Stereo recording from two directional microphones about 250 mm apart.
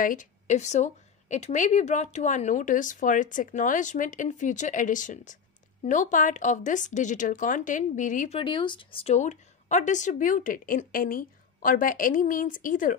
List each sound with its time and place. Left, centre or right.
0.0 s speech: left